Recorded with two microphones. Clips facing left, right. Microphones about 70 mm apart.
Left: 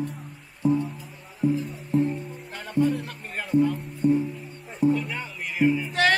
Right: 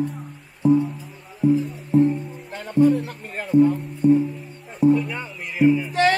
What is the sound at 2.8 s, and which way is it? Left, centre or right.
Music, right.